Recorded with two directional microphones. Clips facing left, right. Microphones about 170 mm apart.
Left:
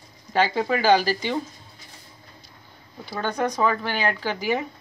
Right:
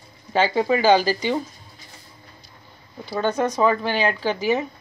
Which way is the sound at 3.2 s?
20° right (ahead or behind).